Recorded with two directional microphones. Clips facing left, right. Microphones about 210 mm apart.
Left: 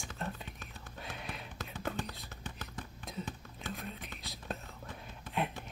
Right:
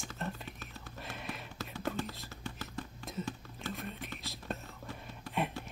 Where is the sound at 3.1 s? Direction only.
Centre (ahead or behind).